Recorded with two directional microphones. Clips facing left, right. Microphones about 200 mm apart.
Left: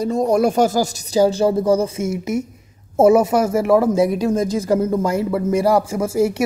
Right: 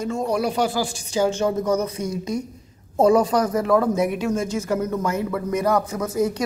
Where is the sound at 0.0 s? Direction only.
35° left (ahead or behind).